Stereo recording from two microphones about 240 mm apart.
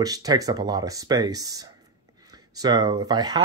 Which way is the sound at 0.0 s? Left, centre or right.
Centre.